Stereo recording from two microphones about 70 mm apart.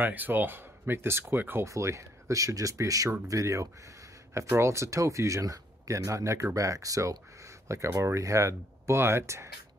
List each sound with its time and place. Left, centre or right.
0.0 s speech: right
1.7 s speech: right